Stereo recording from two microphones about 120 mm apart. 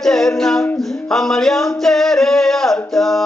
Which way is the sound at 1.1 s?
5° left (ahead or behind).